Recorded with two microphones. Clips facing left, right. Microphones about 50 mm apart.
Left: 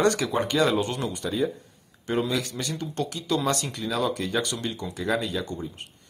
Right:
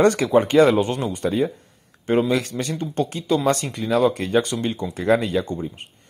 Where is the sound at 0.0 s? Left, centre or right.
Right.